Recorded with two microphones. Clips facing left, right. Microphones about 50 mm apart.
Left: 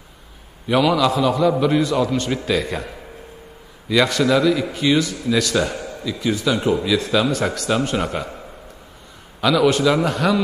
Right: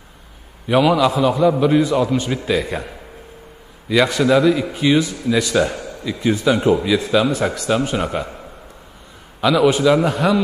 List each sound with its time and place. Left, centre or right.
0.7 s a man's voice: centre
3.9 s a man's voice: centre
6.0 s speech: right
6.7 s a man's voice: centre
9.4 s a man's voice: centre